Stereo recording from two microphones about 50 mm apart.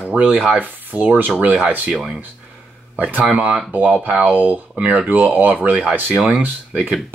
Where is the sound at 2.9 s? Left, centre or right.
Right.